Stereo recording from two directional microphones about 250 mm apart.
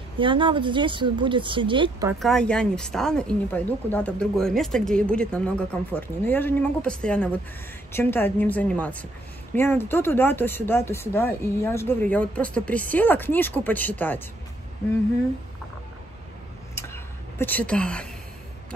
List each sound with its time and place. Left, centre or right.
0.2 s speech: centre
2.1 s a woman's voice: centre
16.7 s a sound: centre